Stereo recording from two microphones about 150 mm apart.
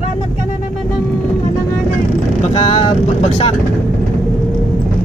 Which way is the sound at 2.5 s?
35° left (ahead or behind).